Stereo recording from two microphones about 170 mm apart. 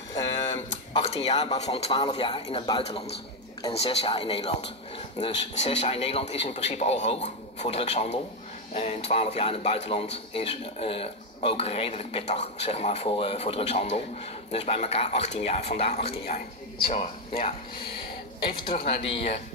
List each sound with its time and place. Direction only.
0.9 s speech: 35° left (ahead or behind)
18.4 s speech: 35° left (ahead or behind)